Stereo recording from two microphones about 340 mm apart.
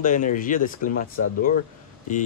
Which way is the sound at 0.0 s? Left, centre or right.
Left.